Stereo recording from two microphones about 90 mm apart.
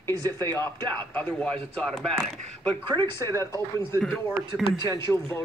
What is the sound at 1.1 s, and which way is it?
A woman's voice, 15° left (ahead or behind).